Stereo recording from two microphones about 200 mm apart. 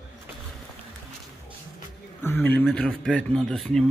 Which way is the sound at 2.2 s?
10° left (ahead or behind).